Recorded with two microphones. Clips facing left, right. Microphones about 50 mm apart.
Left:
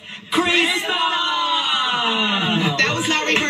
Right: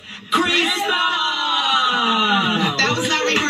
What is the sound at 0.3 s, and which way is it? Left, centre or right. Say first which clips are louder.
Speech: even; centre.